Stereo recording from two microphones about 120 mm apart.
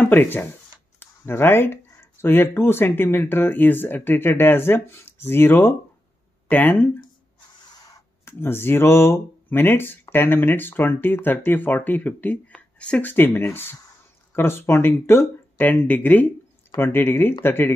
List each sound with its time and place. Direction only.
0.0 s speech: 15° left (ahead or behind)
7.6 s speech: 30° left (ahead or behind)